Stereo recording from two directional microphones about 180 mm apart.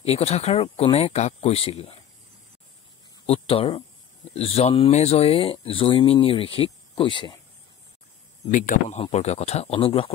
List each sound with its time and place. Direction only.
0.0 s speech: 35° left (ahead or behind)
3.3 s speech: 30° left (ahead or behind)
8.5 s speech: 45° left (ahead or behind)